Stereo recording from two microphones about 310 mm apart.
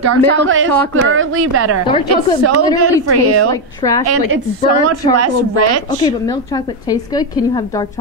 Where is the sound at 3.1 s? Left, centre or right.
Right.